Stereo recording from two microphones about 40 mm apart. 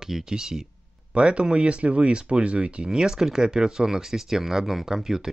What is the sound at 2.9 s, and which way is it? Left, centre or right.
Speech, centre.